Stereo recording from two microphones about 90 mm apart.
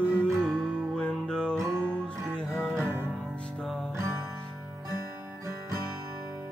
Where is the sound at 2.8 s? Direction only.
25° right (ahead or behind).